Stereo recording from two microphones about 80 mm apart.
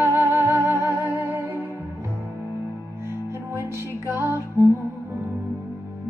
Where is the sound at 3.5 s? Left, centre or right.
Right.